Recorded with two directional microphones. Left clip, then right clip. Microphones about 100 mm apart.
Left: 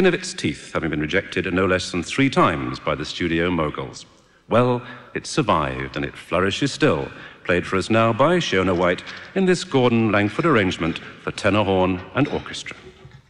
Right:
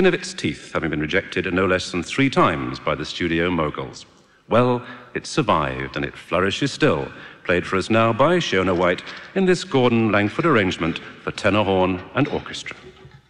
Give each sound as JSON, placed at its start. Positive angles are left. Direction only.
{"t": 0.0, "sound": "a man's voice", "side_deg": -30}